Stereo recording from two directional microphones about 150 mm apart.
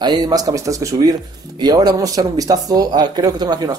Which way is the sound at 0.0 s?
25° right (ahead or behind).